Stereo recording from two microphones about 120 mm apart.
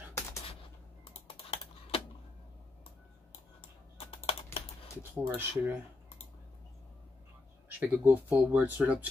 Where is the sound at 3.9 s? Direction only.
50° left (ahead or behind).